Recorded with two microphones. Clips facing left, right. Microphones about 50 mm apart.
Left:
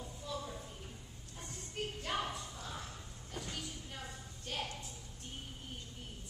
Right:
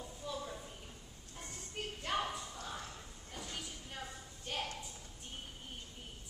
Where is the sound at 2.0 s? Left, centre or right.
Centre.